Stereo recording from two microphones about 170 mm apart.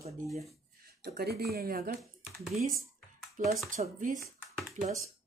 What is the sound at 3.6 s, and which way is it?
Speech, 50° right (ahead or behind).